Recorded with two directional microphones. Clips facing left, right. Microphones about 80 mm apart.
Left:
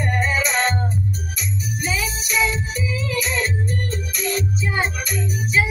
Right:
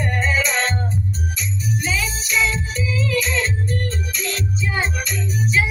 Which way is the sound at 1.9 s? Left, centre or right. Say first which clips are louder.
Right 1 dB; centre.